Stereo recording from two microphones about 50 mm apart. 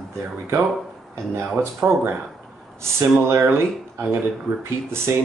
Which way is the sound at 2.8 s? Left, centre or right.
Right.